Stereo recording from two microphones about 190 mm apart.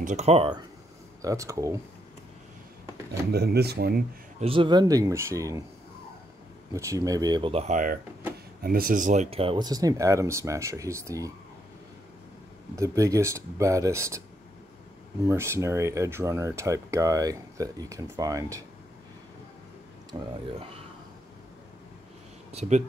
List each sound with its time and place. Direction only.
0.0 s speech: 35° right (ahead or behind)
1.2 s speech: 15° right (ahead or behind)
3.3 s speech: 55° right (ahead or behind)
4.4 s speech: 30° right (ahead or behind)
6.7 s speech: 15° right (ahead or behind)
12.7 s speech: 15° right (ahead or behind)
15.2 s speech: 15° right (ahead or behind)
20.1 s speech: 20° right (ahead or behind)
22.5 s speech: 35° right (ahead or behind)